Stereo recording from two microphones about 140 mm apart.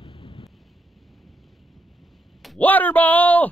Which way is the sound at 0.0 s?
40° left (ahead or behind).